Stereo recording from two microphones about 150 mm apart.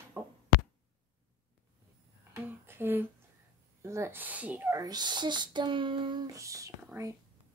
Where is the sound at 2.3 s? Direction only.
15° right (ahead or behind).